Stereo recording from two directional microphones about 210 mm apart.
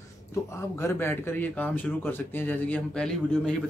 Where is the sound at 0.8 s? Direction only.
10° left (ahead or behind).